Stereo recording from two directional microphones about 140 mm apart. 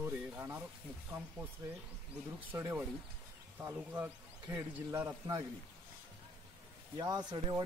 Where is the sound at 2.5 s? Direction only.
15° right (ahead or behind).